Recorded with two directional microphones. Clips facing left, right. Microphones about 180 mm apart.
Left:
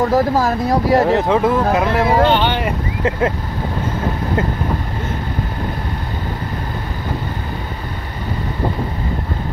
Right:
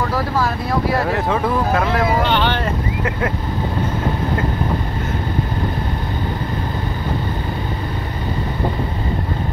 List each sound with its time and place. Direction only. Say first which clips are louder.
0.0 s speech: left 5 dB; 45° left (ahead or behind)
1.1 s speech: left 4 dB; 20° left (ahead or behind)